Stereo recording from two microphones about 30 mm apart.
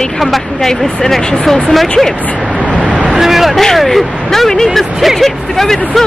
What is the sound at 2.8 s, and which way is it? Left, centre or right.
Vehicle, right.